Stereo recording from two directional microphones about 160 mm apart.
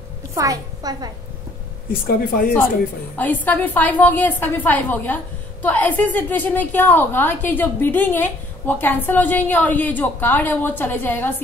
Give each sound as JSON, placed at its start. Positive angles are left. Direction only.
{"t": 0.3, "sound": "a woman's voice", "side_deg": -20}
{"t": 1.9, "sound": "speech", "side_deg": 65}
{"t": 3.2, "sound": "a woman's voice", "side_deg": 10}